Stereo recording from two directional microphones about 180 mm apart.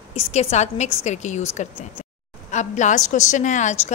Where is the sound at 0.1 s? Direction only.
35° left (ahead or behind).